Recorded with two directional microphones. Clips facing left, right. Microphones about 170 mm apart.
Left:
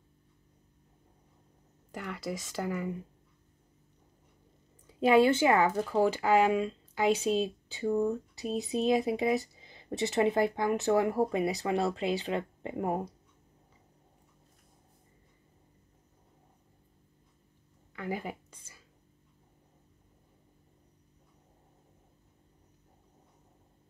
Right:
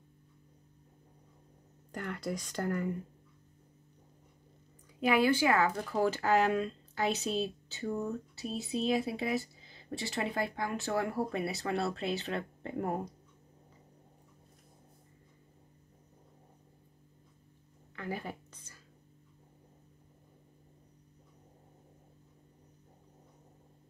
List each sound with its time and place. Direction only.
2.0 s speech: 5° left (ahead or behind)
5.0 s speech: 25° left (ahead or behind)
17.9 s a sound: 15° left (ahead or behind)